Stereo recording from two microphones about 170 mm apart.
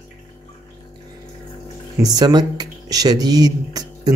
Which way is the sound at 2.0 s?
25° right (ahead or behind).